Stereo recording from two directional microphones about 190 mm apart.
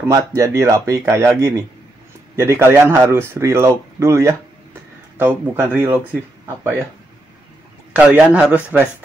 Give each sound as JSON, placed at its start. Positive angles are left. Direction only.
{"t": 0.1, "sound": "speech", "side_deg": -15}
{"t": 7.9, "sound": "speech", "side_deg": -5}